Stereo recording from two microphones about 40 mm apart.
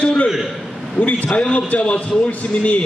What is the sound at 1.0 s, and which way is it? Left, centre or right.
Speech, right.